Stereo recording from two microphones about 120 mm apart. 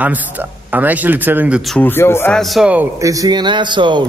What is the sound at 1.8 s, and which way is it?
Speech, 20° left (ahead or behind).